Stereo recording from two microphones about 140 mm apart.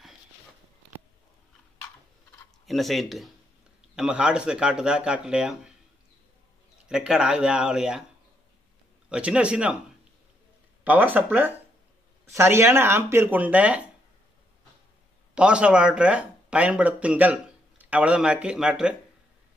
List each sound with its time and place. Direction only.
2.6 s speech: centre (ahead or behind)
6.9 s speech: 5° right (ahead or behind)
9.1 s speech: 10° right (ahead or behind)
10.8 s speech: 10° right (ahead or behind)
15.3 s speech: 10° right (ahead or behind)